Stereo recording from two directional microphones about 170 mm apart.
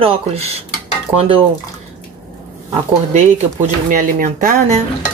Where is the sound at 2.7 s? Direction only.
45° right (ahead or behind).